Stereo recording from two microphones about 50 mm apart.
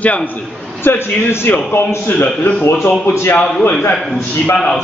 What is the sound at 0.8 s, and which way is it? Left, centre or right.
A man's voice, left.